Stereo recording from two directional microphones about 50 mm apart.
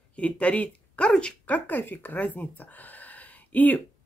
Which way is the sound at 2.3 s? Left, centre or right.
Left.